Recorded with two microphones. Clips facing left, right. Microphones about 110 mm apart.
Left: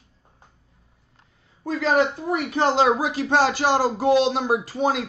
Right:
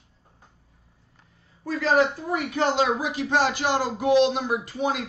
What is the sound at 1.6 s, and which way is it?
A woman's voice, 25° left (ahead or behind).